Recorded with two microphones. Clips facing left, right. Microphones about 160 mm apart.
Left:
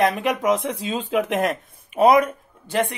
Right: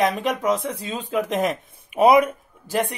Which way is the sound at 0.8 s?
20° left (ahead or behind).